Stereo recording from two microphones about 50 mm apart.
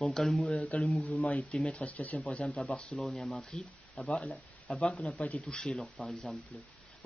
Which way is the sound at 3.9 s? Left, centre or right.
Left.